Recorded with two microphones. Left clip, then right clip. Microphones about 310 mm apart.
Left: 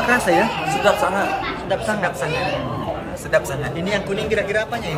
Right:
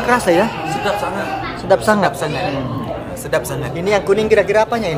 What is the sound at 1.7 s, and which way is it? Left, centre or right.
Speech, centre.